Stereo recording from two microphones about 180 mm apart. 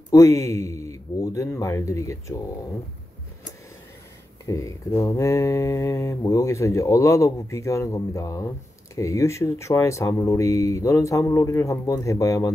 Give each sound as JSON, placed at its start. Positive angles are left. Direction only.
{"t": 0.1, "sound": "mantra", "side_deg": 15}
{"t": 4.5, "sound": "mantra", "side_deg": 15}